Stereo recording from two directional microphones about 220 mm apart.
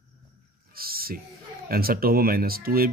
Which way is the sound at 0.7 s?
45° right (ahead or behind).